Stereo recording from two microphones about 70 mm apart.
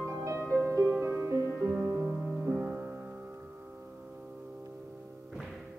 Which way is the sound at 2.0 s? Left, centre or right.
Centre.